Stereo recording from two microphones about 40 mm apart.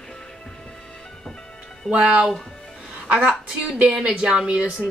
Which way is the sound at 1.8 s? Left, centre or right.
Right.